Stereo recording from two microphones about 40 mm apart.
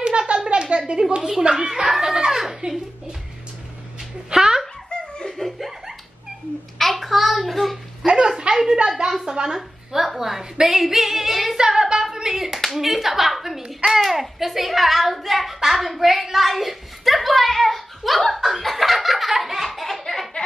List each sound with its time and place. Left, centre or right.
0.5 s a sound: right
1.4 s a child's voice: right
1.7 s a woman's voice: centre
2.6 s a child's voice: right
4.3 s a sound: centre
5.4 s laughter: centre
6.8 s child singing: centre
8.0 s a sound: right
9.6 s a woman's voice: centre
11.5 s a child's voice: centre
18.3 s laughter: centre